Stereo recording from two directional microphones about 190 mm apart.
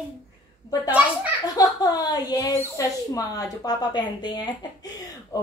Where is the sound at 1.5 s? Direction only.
20° left (ahead or behind).